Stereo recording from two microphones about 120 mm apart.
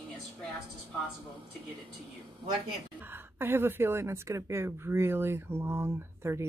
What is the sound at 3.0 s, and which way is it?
A woman's voice, 20° right (ahead or behind).